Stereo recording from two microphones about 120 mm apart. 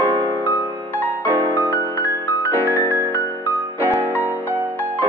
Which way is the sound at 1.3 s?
15° right (ahead or behind).